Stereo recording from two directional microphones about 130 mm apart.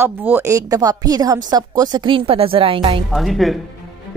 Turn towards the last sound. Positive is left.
turn(degrees=0)  # may be behind; listen again after turning